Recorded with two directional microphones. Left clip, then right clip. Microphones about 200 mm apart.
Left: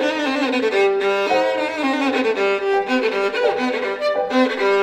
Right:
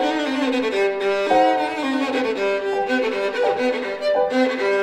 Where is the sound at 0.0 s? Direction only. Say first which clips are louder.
Left 1 dB; 35° left (ahead or behind).